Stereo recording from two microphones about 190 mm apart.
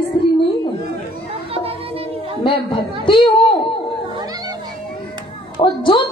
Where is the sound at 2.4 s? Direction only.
25° left (ahead or behind).